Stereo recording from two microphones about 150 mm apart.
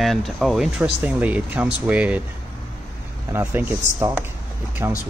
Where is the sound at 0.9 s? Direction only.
10° right (ahead or behind).